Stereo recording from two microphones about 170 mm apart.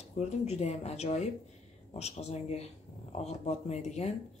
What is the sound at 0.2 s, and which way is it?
Speech, 40° left (ahead or behind).